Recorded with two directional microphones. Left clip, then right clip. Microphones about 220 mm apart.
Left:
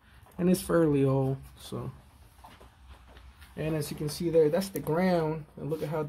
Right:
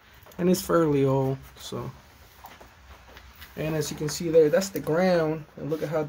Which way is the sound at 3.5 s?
5° left (ahead or behind).